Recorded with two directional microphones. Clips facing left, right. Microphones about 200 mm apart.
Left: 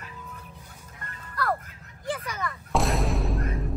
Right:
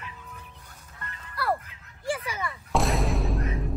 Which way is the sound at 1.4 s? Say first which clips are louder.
Even; 10° right (ahead or behind).